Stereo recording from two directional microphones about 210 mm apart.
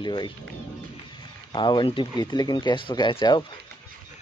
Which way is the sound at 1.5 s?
20° left (ahead or behind).